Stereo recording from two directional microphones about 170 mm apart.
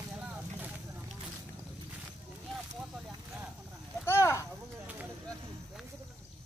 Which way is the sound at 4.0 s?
15° left (ahead or behind).